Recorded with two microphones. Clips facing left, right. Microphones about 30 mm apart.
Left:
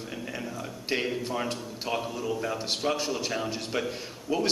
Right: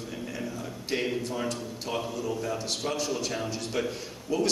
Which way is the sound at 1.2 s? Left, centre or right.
Left.